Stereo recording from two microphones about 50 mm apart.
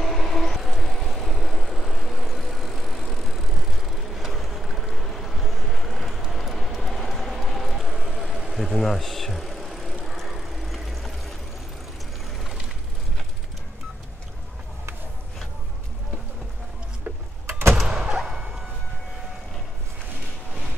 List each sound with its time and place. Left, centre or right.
0.0 s vehicle: centre
17.5 s door: right
17.8 s thunk: centre